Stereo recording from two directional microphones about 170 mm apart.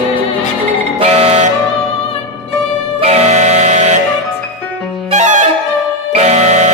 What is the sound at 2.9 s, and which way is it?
Music, 40° right (ahead or behind).